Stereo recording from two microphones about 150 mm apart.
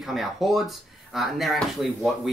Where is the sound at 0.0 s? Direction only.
Centre (ahead or behind).